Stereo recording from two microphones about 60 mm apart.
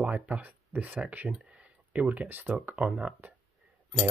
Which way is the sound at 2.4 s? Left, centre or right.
Right.